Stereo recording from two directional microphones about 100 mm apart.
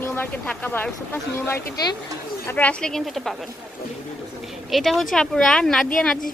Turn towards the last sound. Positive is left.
turn(degrees=5)  # may be behind; listen again after turning